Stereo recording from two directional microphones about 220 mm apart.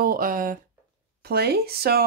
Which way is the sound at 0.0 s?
40° right (ahead or behind).